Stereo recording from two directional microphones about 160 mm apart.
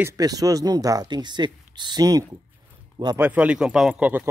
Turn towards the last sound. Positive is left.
turn(degrees=-5)  # may be behind; listen again after turning